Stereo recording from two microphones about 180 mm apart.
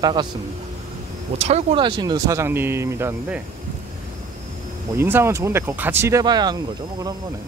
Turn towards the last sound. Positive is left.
turn(degrees=-20)  # may be behind; listen again after turning